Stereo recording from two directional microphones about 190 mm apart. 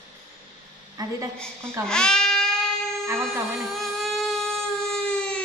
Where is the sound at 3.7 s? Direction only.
Centre (ahead or behind).